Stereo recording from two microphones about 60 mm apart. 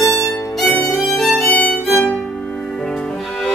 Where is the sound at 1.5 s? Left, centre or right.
Left.